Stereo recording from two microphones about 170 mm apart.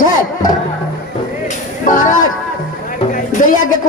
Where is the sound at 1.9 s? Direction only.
50° left (ahead or behind).